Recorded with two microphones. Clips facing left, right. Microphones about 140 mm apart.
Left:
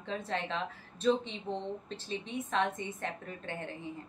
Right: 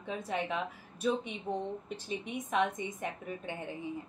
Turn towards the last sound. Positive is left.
turn(degrees=-15)  # may be behind; listen again after turning